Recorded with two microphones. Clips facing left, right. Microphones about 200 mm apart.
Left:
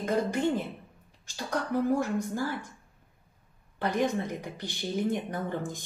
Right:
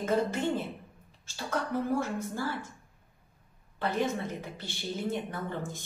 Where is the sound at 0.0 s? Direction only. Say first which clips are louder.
Left 1 dB; 15° left (ahead or behind).